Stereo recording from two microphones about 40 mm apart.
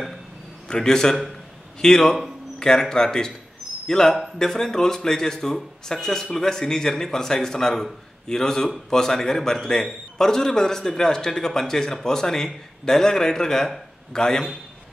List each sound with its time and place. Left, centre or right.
0.7 s a man's voice: centre